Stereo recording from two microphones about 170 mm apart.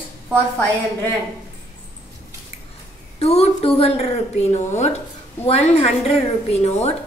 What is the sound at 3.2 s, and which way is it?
A woman's voice, 35° left (ahead or behind).